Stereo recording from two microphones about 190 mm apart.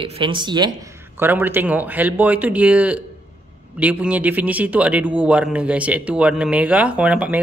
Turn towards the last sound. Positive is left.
turn(degrees=-5)  # may be behind; listen again after turning